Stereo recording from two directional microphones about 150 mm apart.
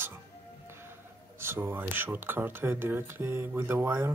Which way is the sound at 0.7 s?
15° right (ahead or behind).